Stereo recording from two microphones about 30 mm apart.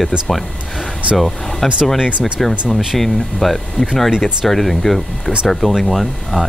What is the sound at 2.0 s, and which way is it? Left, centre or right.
Speech, right.